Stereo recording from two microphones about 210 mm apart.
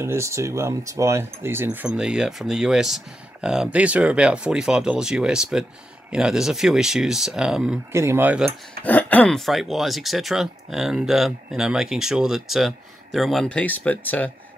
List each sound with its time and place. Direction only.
0.0 s speech: 15° right (ahead or behind)
8.8 s speech: 5° left (ahead or behind)